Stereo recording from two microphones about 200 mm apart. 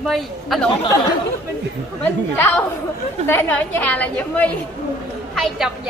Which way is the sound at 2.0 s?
10° left (ahead or behind).